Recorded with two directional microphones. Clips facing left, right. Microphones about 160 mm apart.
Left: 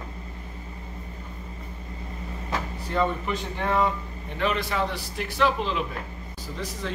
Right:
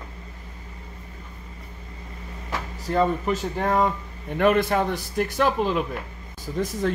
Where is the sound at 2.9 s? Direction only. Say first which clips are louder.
Right 4 dB; 40° right (ahead or behind).